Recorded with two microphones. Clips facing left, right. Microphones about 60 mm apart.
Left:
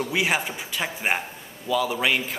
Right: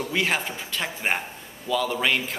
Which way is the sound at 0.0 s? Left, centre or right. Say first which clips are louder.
Left 1 dB; centre.